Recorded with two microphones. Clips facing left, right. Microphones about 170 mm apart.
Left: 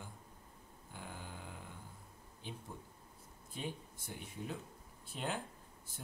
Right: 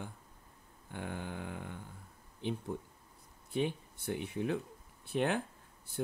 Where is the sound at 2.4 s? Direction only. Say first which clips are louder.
Right 12 dB; 65° right (ahead or behind).